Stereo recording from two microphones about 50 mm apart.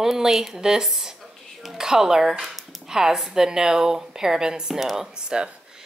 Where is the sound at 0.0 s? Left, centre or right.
Centre.